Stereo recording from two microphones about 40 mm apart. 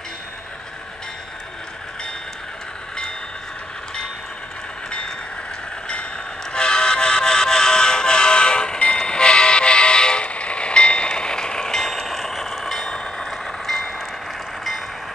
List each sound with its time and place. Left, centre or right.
6.5 s music: left
10.2 s train: left; by 12.9 s centre
12.9 s vehicle: left
13.7 s vehicle: centre